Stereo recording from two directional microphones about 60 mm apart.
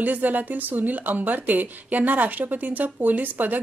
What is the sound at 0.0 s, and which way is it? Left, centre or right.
A woman's voice, right.